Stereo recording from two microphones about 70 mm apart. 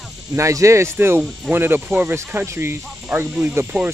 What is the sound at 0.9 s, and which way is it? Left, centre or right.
Speech, right.